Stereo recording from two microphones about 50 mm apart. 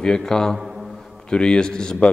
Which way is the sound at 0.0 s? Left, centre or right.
Centre.